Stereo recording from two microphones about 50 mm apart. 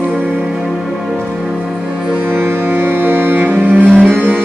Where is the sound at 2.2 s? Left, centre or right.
Right.